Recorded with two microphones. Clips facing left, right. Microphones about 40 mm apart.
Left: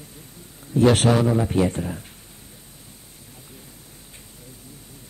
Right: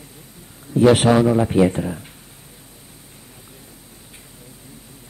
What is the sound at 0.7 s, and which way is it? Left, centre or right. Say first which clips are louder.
Speech: right 4 dB; centre.